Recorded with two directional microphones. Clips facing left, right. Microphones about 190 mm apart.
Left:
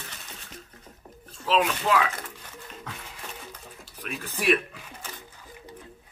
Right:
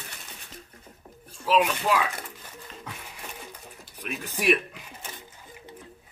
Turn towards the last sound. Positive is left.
turn(degrees=-15)  # may be behind; listen again after turning